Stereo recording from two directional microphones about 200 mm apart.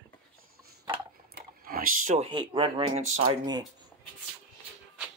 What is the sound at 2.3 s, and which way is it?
Speech, 25° right (ahead or behind).